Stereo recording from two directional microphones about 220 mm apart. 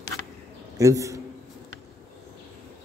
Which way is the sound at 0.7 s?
15° right (ahead or behind).